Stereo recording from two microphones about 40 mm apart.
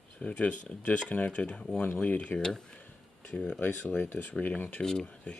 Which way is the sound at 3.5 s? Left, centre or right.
Left.